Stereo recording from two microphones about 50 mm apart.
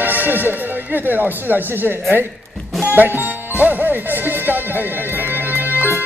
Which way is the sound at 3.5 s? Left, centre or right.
Right.